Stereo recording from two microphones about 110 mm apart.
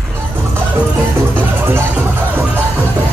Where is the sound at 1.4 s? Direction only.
20° right (ahead or behind).